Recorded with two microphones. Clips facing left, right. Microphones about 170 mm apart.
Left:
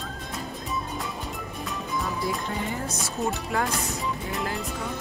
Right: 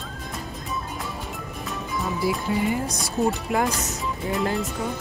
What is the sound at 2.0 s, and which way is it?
Speech, 5° right (ahead or behind).